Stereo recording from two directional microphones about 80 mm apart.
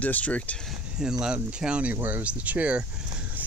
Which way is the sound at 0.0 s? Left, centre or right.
Centre.